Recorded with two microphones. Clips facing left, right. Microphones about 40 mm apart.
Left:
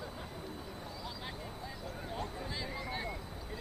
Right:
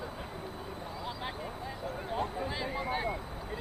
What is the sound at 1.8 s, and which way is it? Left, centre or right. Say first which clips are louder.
Vehicle: right 7 dB; right.